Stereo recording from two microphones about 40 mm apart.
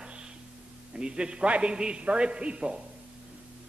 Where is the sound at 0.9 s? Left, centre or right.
Right.